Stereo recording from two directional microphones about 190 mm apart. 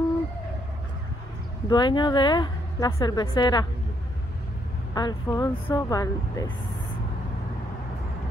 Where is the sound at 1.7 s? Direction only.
25° left (ahead or behind).